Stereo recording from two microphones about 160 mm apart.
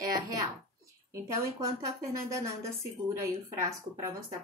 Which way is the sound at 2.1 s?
20° right (ahead or behind).